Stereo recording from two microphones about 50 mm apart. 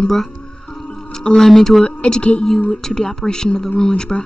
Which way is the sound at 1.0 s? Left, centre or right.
Centre.